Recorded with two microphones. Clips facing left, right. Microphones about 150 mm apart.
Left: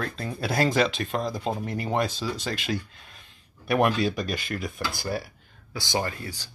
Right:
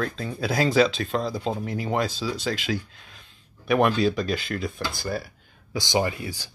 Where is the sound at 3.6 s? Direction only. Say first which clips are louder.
Right 2 dB; 5° left (ahead or behind).